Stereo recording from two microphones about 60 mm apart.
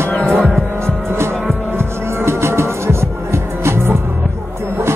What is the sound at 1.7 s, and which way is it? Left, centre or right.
Music, right.